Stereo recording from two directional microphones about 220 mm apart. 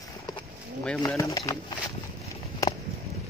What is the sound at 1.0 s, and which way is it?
Speech, 15° left (ahead or behind).